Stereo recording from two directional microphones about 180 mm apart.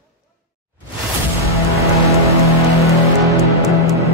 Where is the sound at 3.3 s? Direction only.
20° right (ahead or behind).